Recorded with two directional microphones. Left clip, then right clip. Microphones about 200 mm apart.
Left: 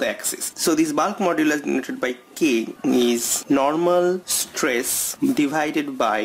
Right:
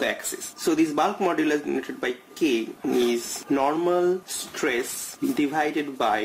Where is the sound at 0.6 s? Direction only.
40° left (ahead or behind).